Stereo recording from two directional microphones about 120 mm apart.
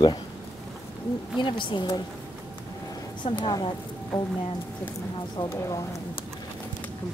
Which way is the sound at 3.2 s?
50° left (ahead or behind).